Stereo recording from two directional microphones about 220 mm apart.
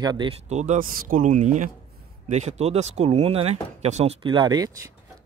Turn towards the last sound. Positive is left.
turn(degrees=-15)  # may be behind; listen again after turning